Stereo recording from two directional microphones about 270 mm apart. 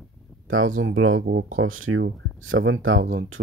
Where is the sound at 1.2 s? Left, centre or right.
Right.